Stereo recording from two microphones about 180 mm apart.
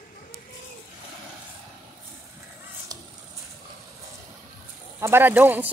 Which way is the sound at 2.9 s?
20° right (ahead or behind).